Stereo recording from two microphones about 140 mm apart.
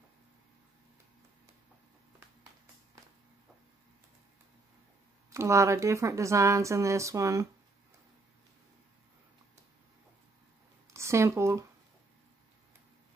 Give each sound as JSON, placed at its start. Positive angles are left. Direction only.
{"t": 5.3, "sound": "a woman's voice", "side_deg": -20}
{"t": 10.9, "sound": "a woman's voice", "side_deg": -20}